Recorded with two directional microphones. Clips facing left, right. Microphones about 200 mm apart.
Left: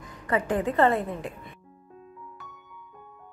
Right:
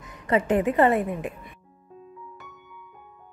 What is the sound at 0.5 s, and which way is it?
A woman's voice, 20° right (ahead or behind).